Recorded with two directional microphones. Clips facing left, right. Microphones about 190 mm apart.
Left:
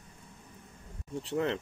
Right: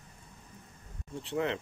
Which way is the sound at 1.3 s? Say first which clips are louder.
Left 1 dB; 40° left (ahead or behind).